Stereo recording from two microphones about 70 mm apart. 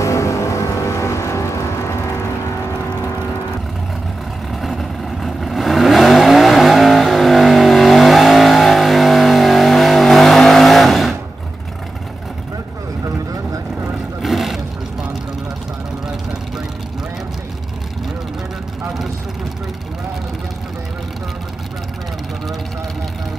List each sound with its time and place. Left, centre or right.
0.0 s vehicle: left
4.6 s vehicle: centre
14.2 s roar: centre